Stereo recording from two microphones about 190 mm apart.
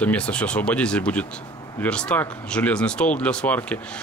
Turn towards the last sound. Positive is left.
turn(degrees=5)  # may be behind; listen again after turning